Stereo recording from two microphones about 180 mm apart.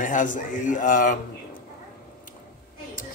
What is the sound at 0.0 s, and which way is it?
Speech, 45° left (ahead or behind).